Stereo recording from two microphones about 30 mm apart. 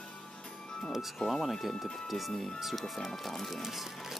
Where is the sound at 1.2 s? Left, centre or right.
Centre.